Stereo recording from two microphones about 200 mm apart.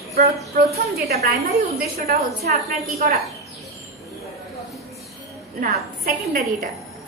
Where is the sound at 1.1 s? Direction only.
50° right (ahead or behind).